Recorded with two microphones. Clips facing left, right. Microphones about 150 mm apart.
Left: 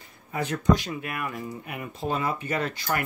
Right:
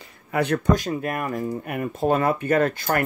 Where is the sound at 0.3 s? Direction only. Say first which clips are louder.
Right 7 dB; 65° right (ahead or behind).